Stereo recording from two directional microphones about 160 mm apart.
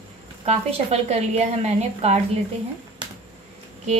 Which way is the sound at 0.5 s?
40° right (ahead or behind).